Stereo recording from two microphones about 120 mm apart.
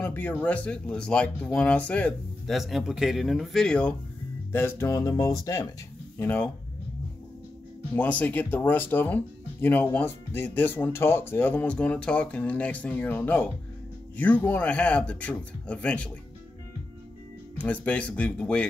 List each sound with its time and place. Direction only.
0.0 s speech: 15° left (ahead or behind)
4.5 s speech: 20° left (ahead or behind)
6.1 s speech: 15° left (ahead or behind)
7.9 s speech: 15° left (ahead or behind)
17.6 s speech: 10° left (ahead or behind)